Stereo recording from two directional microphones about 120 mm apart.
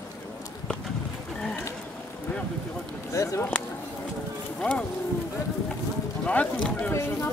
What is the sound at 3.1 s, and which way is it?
Speech, 25° left (ahead or behind).